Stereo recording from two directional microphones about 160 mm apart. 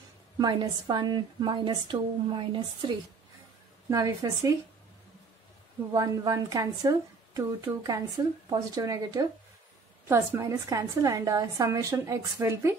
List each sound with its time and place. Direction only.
0.4 s a woman's voice: 25° right (ahead or behind)
3.9 s a woman's voice: 20° right (ahead or behind)
5.9 s a woman's voice: 20° right (ahead or behind)